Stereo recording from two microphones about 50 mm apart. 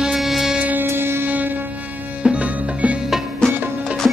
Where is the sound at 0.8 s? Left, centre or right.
Right.